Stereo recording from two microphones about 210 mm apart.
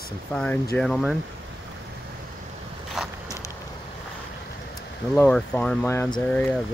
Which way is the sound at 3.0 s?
Centre (ahead or behind).